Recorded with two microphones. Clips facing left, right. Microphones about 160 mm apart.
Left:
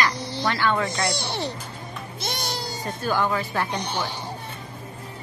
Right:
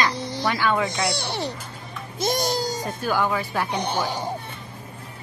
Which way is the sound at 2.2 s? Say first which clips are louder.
Right 8 dB; 40° right (ahead or behind).